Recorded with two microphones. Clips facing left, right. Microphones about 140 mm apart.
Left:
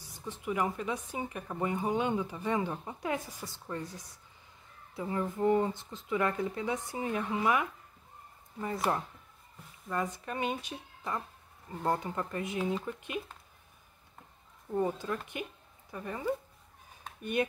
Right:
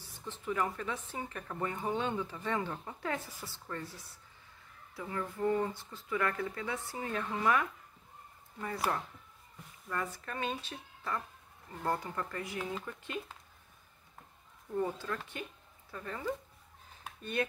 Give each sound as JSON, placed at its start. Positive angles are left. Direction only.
{"t": 0.0, "sound": "speech", "side_deg": 15}
{"t": 8.9, "sound": "speech", "side_deg": 25}
{"t": 14.7, "sound": "speech", "side_deg": 20}